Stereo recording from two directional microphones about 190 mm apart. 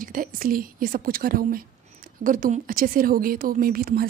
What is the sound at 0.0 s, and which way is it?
Speech, 50° right (ahead or behind).